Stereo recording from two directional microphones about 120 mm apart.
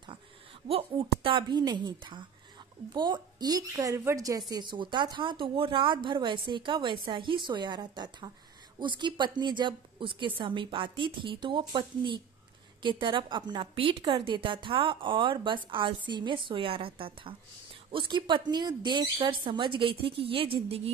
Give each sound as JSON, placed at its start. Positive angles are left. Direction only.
{"t": 0.7, "sound": "speech", "side_deg": -50}
{"t": 1.6, "sound": "a woman's voice", "side_deg": -35}